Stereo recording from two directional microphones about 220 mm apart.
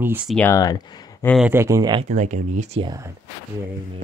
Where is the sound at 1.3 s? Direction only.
5° right (ahead or behind).